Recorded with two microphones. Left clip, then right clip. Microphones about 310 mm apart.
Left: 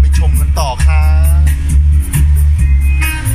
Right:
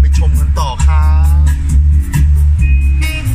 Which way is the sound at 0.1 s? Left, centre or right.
Centre.